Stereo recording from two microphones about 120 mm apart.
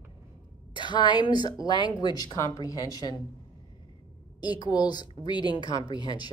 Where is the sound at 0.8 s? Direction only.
40° left (ahead or behind).